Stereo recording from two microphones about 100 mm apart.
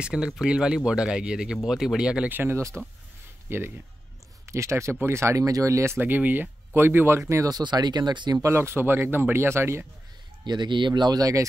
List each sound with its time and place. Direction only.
0.0 s speech: 10° right (ahead or behind); by 5.9 s 30° right (ahead or behind)
5.9 s speech: 15° right (ahead or behind)
7.5 s speech: 45° right (ahead or behind)
8.4 s speech: 25° right (ahead or behind)
10.4 s speech: 50° right (ahead or behind)